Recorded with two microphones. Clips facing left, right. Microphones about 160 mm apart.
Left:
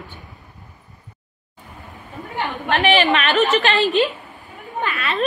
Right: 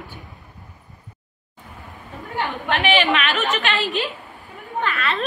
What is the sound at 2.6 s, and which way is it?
Speech, 40° left (ahead or behind).